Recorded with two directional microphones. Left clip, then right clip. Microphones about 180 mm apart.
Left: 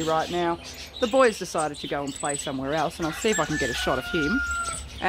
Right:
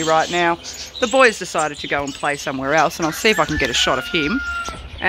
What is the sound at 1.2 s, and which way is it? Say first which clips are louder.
Speech: right 6 dB; 5° right (ahead or behind).